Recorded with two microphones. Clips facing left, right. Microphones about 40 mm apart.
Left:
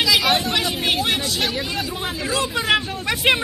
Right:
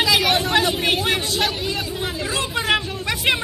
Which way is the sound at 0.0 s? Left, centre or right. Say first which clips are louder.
Even; right.